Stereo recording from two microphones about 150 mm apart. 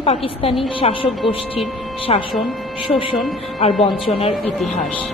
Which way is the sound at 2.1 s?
40° left (ahead or behind).